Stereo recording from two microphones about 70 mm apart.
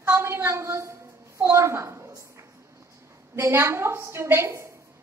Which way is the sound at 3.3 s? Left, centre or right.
Right.